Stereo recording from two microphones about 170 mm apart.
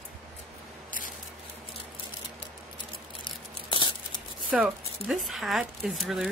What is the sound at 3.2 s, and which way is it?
Tearing, 30° left (ahead or behind).